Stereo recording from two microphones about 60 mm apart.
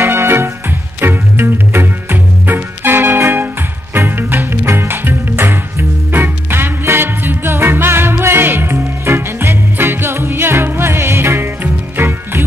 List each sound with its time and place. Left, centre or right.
0.0 s music: right
9.0 s music: right